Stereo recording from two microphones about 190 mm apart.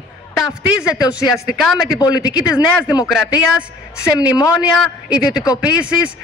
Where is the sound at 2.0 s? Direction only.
20° left (ahead or behind).